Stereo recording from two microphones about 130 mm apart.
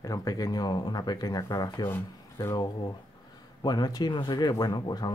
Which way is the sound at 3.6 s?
30° left (ahead or behind).